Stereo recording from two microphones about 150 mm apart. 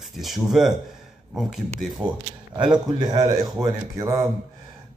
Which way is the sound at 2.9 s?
25° right (ahead or behind).